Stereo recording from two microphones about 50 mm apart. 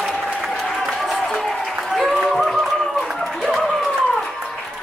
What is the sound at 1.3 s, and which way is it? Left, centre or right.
Applause, centre.